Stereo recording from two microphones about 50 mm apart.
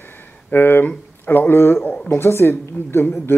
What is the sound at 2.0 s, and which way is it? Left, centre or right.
Speech, left.